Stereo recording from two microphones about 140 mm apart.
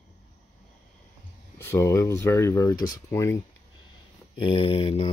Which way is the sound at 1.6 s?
20° left (ahead or behind).